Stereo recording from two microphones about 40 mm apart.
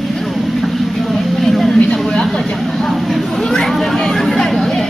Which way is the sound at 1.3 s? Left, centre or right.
Centre.